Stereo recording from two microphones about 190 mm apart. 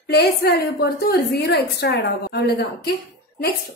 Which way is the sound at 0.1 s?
60° left (ahead or behind).